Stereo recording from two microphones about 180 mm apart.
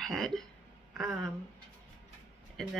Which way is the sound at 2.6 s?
5° left (ahead or behind).